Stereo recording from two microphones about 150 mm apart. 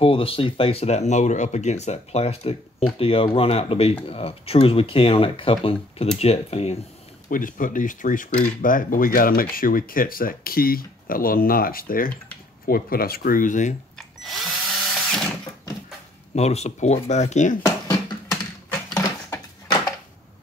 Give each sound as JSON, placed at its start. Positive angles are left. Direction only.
{"t": 0.0, "sound": "speech", "side_deg": 35}
{"t": 7.2, "sound": "speech", "side_deg": 65}
{"t": 13.9, "sound": "drill", "side_deg": 0}
{"t": 16.3, "sound": "speech", "side_deg": 45}
{"t": 17.6, "sound": "a sound", "side_deg": 20}